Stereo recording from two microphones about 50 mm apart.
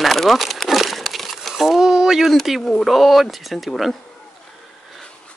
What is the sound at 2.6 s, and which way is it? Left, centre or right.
Speech, centre.